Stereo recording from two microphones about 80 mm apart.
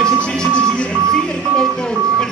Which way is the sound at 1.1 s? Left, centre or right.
Centre.